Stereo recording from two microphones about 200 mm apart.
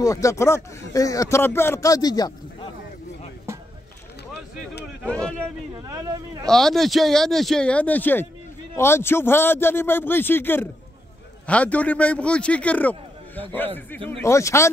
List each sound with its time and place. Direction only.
0.0 s speech: 15° left (ahead or behind)
5.0 s a sound: 5° left (ahead or behind)
5.9 s speech: 15° right (ahead or behind)
6.4 s speech: centre (ahead or behind)